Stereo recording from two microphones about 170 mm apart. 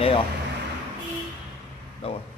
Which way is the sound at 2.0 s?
35° left (ahead or behind).